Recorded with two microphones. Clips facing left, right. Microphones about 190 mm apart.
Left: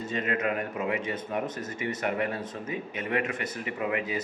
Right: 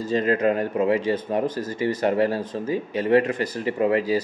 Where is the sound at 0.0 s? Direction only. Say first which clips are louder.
Right 8 dB; 35° right (ahead or behind).